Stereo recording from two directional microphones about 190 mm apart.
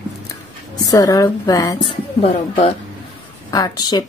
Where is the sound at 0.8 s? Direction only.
20° left (ahead or behind).